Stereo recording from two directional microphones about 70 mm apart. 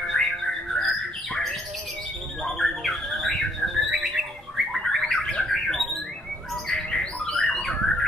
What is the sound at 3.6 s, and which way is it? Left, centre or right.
Bird, centre.